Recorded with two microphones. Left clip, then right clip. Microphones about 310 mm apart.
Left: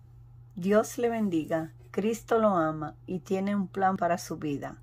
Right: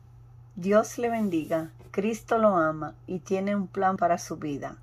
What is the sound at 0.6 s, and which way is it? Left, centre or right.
Speech, centre.